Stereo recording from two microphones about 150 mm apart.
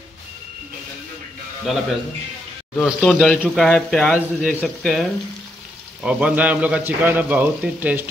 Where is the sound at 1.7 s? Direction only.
Centre (ahead or behind).